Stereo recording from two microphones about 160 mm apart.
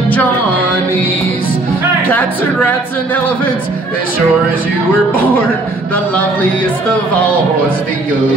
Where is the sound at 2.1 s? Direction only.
10° left (ahead or behind).